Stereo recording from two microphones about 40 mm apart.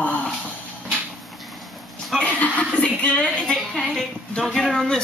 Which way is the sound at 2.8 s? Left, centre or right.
Left.